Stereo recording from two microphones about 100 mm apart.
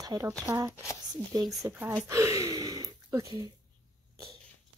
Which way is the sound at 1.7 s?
20° right (ahead or behind).